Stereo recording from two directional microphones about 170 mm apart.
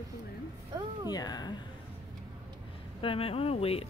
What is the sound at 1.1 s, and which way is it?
Speech, 25° left (ahead or behind).